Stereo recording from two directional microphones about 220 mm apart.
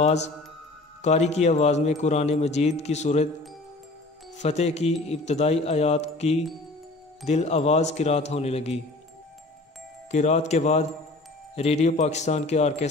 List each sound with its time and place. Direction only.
0.0 s speech: 30° left (ahead or behind)
4.4 s speech: 30° left (ahead or behind)
10.1 s speech: 30° left (ahead or behind)